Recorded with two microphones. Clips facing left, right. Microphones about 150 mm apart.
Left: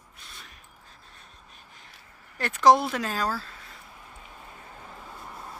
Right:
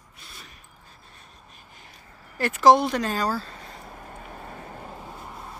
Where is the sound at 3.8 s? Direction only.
50° right (ahead or behind).